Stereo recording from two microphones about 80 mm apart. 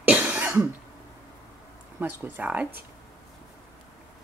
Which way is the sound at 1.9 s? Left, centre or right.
Right.